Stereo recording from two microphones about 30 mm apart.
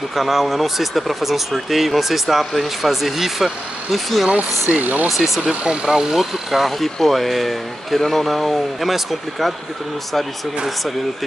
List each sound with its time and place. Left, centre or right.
0.1 s speech: centre
3.9 s speech: centre
4.3 s speech: right
5.0 s speech: centre
5.4 s speech: right
5.9 s speech: centre
6.1 s speech: centre